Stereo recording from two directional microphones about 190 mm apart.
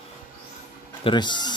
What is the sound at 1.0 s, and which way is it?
Speech, 25° left (ahead or behind).